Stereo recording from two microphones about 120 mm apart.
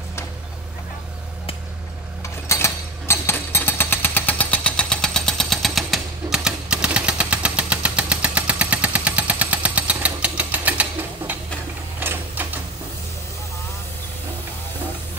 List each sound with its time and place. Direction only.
2.4 s jackhammer: 25° left (ahead or behind); by 11.3 s 10° right (ahead or behind)
12.0 s printer: 15° right (ahead or behind)